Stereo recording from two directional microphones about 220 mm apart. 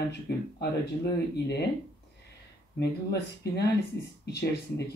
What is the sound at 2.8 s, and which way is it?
Speech, 50° left (ahead or behind).